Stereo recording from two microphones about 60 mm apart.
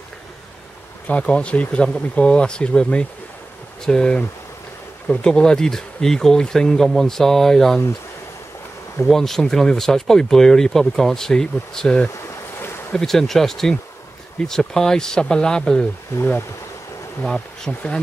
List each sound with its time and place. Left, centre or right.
1.0 s speech: left
9.0 s speech: centre
16.1 s speech: left
17.6 s speech: centre